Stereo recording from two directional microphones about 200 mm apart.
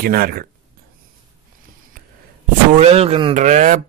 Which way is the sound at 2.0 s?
50° right (ahead or behind).